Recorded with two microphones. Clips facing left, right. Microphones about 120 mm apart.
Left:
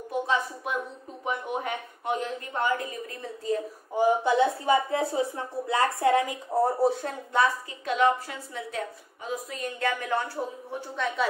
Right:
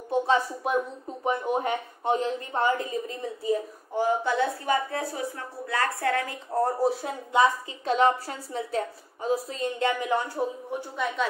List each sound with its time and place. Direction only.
0.1 s a woman's voice: 30° right (ahead or behind)
3.9 s a woman's voice: 15° left (ahead or behind)
6.8 s speech: 5° right (ahead or behind)
7.8 s a woman's voice: 35° right (ahead or behind); by 10.8 s 15° right (ahead or behind)